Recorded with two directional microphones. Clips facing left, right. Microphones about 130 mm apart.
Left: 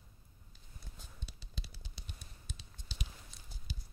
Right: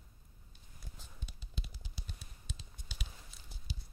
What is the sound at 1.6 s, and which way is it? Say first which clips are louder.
Typing: right 2 dB; 30° left (ahead or behind).